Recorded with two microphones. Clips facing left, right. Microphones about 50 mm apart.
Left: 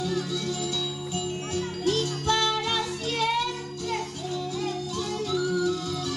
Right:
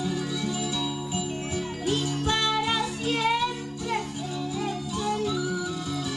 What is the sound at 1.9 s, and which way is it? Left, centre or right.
Music, centre.